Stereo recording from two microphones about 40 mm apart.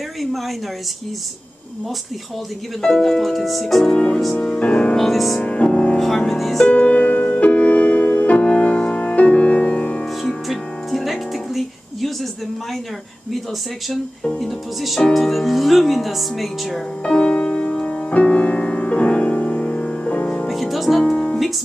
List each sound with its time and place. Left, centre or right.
0.2 s speech: centre
2.8 s speech: centre
4.6 s speech: left
4.9 s speech: centre
5.4 s music: left
5.9 s speech: centre
6.7 s music: left
8.5 s music: left
10.0 s music: centre
14.4 s speech: centre
17.0 s music: left
20.4 s music: centre
21.0 s music: left